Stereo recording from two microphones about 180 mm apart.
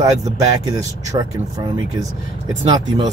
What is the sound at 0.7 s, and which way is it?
Speech, 20° right (ahead or behind).